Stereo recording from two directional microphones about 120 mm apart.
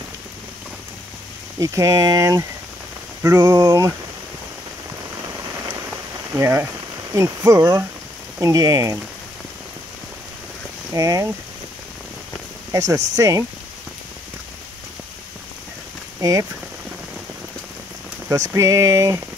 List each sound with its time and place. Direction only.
1.6 s rain on surface: 25° right (ahead or behind)
6.3 s rain on surface: 20° right (ahead or behind)
10.9 s rain on surface: 25° right (ahead or behind)
12.7 s rain on surface: 30° right (ahead or behind)
16.2 s speech: 30° right (ahead or behind)
18.3 s rain on surface: 25° right (ahead or behind)